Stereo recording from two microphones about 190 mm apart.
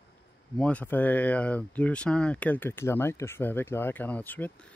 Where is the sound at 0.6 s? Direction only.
5° left (ahead or behind).